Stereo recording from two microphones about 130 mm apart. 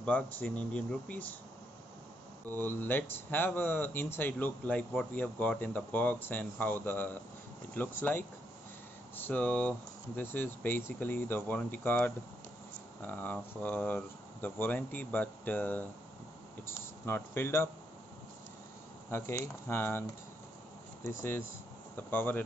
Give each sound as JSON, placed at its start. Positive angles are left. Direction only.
{"t": 0.0, "sound": "speech", "side_deg": 10}
{"t": 2.5, "sound": "speech", "side_deg": 15}
{"t": 19.0, "sound": "speech", "side_deg": 20}